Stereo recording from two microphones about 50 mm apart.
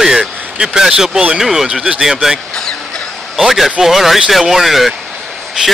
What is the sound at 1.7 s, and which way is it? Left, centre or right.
Speech, centre.